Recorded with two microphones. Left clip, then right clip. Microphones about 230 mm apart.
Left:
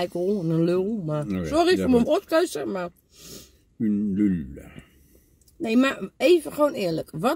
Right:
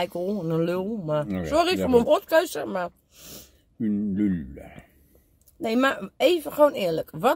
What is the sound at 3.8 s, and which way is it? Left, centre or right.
Speech, left.